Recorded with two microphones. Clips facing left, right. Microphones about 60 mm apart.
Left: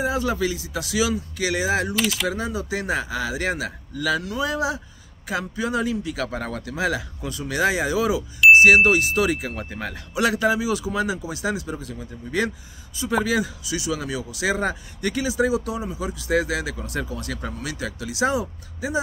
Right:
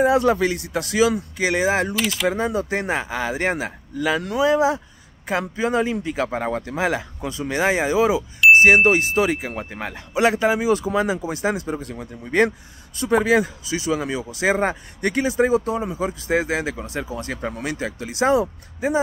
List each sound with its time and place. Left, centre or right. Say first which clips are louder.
0.0 s a man's voice: right 6 dB; right
2.0 s speech: right 2 dB; centre
2.3 s a man's voice: right 4 dB; right
17.5 s a man's voice: right 5 dB; right
17.7 s speech: right 2 dB; right